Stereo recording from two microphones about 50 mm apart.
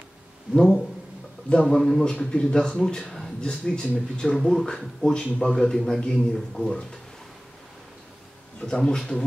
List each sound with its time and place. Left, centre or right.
0.6 s a man's voice: centre
2.1 s speech: centre
3.3 s speech: centre
4.4 s speech: centre
8.5 s speech: centre